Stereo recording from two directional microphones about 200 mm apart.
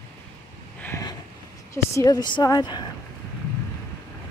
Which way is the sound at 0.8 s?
15° left (ahead or behind).